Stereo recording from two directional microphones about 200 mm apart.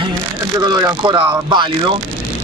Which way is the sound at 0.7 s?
20° right (ahead or behind).